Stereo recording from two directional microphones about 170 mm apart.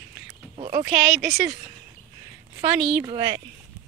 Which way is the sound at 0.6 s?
25° right (ahead or behind).